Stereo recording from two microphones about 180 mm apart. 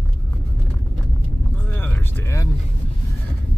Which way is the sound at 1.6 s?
10° left (ahead or behind).